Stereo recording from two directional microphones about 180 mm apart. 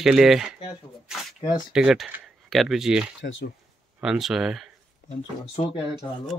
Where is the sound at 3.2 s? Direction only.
80° left.